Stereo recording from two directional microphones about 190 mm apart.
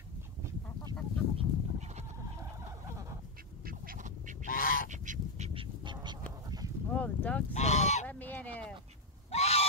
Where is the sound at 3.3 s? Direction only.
50° right (ahead or behind).